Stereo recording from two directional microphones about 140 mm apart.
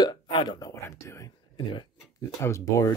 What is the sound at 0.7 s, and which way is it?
Speech, 20° left (ahead or behind).